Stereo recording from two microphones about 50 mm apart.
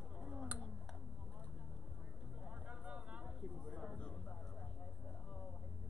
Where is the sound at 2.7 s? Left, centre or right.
Right.